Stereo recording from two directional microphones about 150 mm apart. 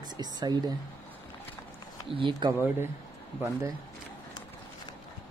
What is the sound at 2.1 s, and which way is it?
Speech, 35° right (ahead or behind).